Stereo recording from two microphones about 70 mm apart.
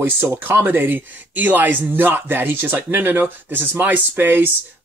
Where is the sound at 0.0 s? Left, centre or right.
Right.